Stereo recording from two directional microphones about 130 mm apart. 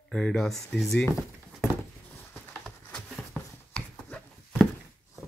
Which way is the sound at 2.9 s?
5° left (ahead or behind).